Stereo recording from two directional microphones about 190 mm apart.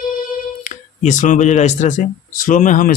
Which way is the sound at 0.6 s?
40° left (ahead or behind).